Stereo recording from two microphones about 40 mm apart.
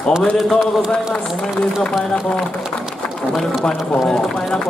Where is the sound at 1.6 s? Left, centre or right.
Left.